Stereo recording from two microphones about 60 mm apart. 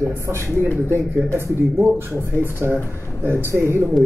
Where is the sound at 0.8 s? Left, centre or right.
Right.